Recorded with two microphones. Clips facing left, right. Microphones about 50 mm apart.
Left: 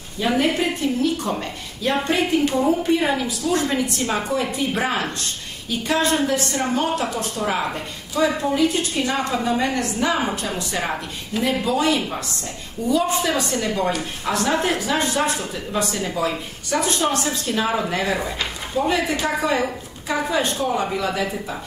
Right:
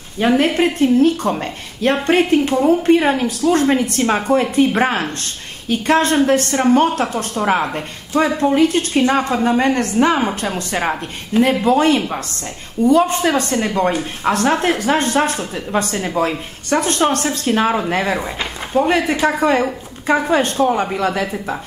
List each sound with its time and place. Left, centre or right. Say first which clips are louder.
0.4 s speech: right 5 dB; right
11.6 s speech: right 6 dB; right
17.7 s speech: right 4 dB; right
18.9 s speech: right 3 dB; right